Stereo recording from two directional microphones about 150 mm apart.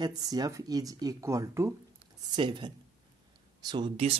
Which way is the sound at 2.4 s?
30° right (ahead or behind).